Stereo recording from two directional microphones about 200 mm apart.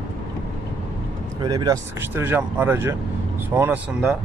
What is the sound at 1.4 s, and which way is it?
Speech, 20° right (ahead or behind).